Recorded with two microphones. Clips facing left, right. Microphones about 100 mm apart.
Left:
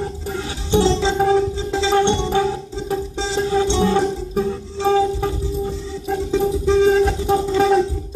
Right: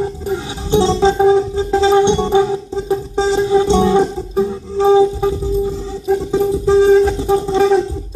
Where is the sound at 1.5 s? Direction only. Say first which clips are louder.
Right 7 dB; 45° right (ahead or behind).